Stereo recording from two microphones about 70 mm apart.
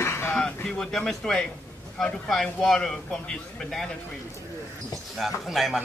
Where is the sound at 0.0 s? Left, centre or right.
Left.